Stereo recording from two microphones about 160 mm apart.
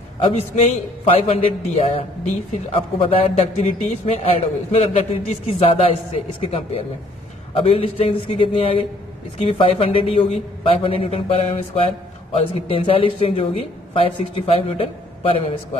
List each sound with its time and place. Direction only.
0.4 s speech: 40° left (ahead or behind)